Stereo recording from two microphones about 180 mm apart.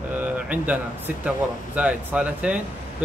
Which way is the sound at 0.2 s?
10° right (ahead or behind).